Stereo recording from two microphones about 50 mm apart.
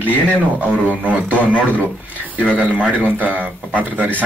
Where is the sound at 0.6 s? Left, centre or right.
Right.